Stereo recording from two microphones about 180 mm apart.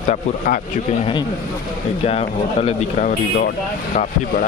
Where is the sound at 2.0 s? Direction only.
35° left (ahead or behind).